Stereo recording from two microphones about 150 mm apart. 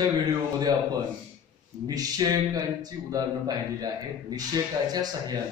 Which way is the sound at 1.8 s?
25° right (ahead or behind).